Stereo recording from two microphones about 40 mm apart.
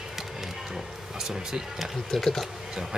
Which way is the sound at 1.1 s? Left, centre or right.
Centre.